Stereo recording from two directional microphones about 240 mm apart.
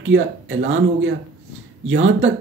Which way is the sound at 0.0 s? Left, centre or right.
Right.